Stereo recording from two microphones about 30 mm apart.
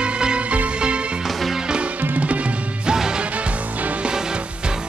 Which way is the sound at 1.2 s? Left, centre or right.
Centre.